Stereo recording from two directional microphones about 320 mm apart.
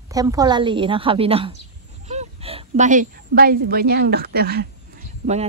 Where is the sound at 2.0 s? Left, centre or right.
Centre.